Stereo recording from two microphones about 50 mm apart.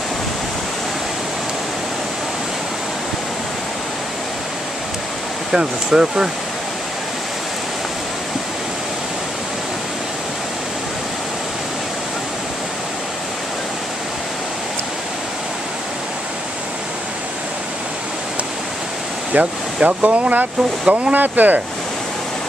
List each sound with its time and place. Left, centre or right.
5.5 s speech: centre
19.3 s speech: right
21.1 s speech: right